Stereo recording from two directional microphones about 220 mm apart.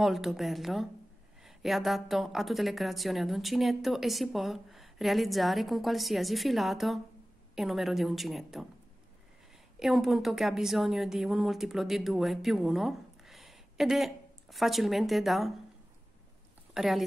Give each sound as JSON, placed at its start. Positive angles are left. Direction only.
{"t": 0.0, "sound": "a woman's voice", "side_deg": 0}
{"t": 9.8, "sound": "a woman's voice", "side_deg": 0}
{"t": 16.7, "sound": "speech", "side_deg": 0}